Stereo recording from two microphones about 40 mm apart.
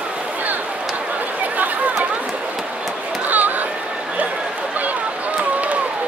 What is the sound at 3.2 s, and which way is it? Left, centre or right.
Chatter, right.